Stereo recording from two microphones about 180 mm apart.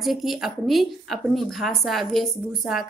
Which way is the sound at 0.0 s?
Centre (ahead or behind).